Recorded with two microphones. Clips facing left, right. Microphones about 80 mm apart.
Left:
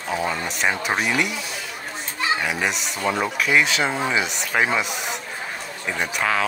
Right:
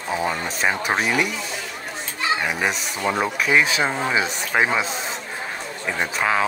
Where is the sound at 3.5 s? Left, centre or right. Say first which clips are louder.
Right 1 dB; centre.